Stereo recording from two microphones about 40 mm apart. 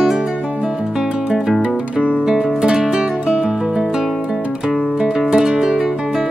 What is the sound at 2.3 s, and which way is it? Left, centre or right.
Music, centre.